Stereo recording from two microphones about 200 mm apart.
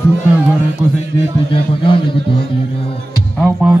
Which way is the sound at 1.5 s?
25° left (ahead or behind).